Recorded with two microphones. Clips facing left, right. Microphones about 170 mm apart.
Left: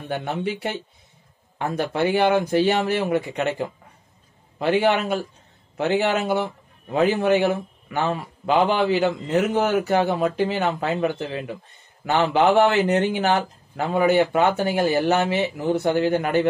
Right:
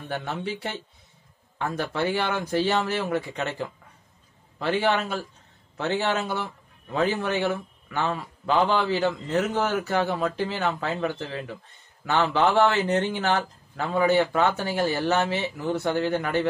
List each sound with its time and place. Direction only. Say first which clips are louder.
0.1 s a man's voice: left 5 dB; 15° left (ahead or behind)